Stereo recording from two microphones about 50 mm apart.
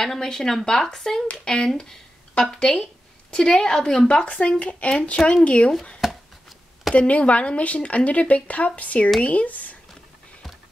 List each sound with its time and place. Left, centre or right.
0.0 s a woman's voice: centre
6.0 s a sound: centre
7.1 s speech: left